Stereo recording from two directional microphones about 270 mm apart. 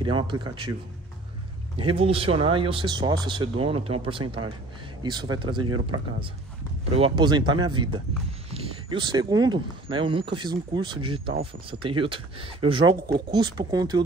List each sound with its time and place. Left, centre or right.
0.0 s speech: centre
1.8 s speech: centre